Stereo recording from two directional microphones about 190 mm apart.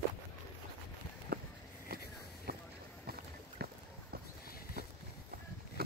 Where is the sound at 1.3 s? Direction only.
55° right (ahead or behind).